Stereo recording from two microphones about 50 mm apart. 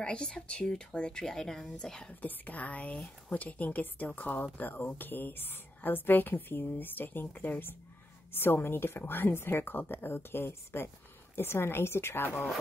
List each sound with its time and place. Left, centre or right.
0.0 s speech: centre
2.2 s a woman's voice: left
8.3 s a woman's voice: left